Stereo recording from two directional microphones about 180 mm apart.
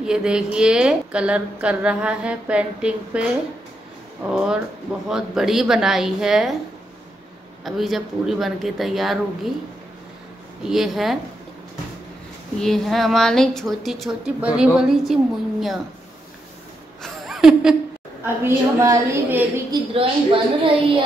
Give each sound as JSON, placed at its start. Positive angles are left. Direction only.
{"t": 0.0, "sound": "a woman's voice", "side_deg": -5}
{"t": 4.3, "sound": "a woman's voice", "side_deg": -5}
{"t": 7.6, "sound": "a woman's voice", "side_deg": 0}
{"t": 10.6, "sound": "a woman's voice", "side_deg": 0}
{"t": 12.6, "sound": "a woman's voice", "side_deg": 0}
{"t": 17.0, "sound": "a sound", "side_deg": 0}
{"t": 18.2, "sound": "a woman's voice", "side_deg": -15}
{"t": 19.9, "sound": "a woman's voice", "side_deg": -30}